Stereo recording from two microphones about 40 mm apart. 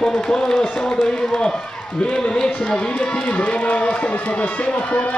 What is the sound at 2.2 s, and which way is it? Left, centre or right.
Speech, left.